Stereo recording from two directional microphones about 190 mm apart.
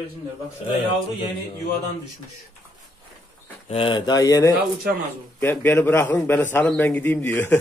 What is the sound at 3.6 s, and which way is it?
A man's voice, 30° left (ahead or behind).